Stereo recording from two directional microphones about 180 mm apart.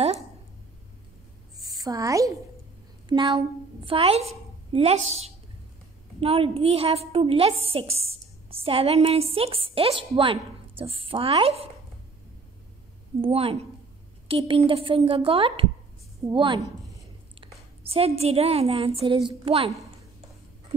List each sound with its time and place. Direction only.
1.6 s a woman's voice: 20° right (ahead or behind)
13.2 s a woman's voice: 30° right (ahead or behind)